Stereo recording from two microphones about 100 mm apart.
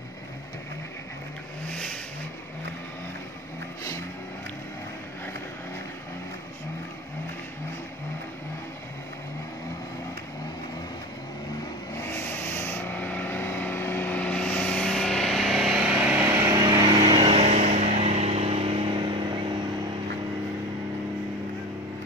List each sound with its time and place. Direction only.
1.7 s vehicle: 5° left (ahead or behind)
12.0 s vehicle: 25° left (ahead or behind); by 15.9 s centre (ahead or behind)
15.9 s vehicle: 15° right (ahead or behind)
16.2 s vehicle: 25° right (ahead or behind)
16.5 s vehicle: 40° right (ahead or behind)
17.3 s vehicle: 90° right; by 19.0 s 70° right (ahead or behind)
19.0 s vehicle: 50° right (ahead or behind)